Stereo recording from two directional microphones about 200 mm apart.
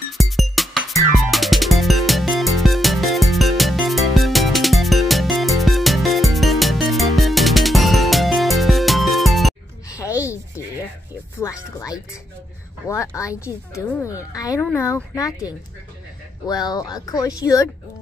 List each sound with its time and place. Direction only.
0.2 s music: centre (ahead or behind)
9.8 s a sound: 15° left (ahead or behind)
11.4 s music: 15° left (ahead or behind)
12.8 s speech: 15° left (ahead or behind)